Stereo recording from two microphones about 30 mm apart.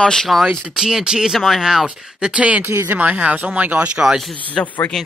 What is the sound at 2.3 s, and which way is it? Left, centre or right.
Speech, right.